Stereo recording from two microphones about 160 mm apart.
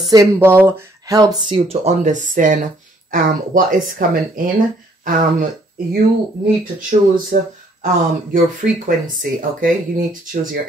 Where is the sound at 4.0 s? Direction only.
60° right (ahead or behind).